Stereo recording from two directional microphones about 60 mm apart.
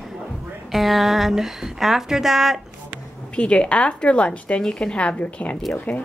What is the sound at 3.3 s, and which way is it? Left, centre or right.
A woman's voice, centre.